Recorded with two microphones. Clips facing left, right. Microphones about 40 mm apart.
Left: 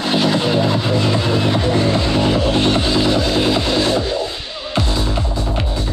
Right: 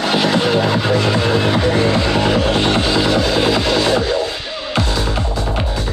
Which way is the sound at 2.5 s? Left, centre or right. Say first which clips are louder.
Right 1 dB; right.